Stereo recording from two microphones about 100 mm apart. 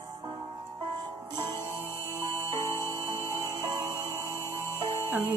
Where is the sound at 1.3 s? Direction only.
45° right (ahead or behind).